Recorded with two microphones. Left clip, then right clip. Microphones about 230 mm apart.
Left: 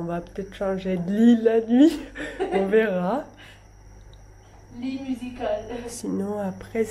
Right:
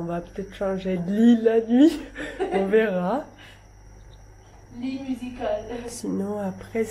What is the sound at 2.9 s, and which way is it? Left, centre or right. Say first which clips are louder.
Speech: even; left.